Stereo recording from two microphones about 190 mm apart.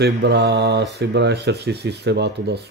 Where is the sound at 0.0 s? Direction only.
60° right (ahead or behind).